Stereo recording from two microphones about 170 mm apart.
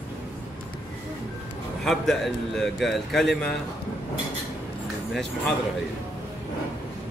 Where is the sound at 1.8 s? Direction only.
Centre (ahead or behind).